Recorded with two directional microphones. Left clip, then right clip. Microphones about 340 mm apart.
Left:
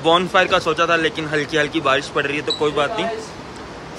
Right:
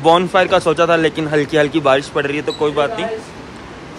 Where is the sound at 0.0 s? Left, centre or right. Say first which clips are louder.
Right 3 dB; centre.